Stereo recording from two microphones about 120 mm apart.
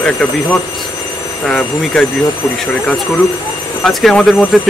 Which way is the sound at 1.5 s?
10° left (ahead or behind).